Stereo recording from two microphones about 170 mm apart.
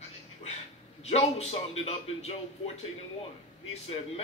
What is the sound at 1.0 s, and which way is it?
A man's voice, 40° left (ahead or behind).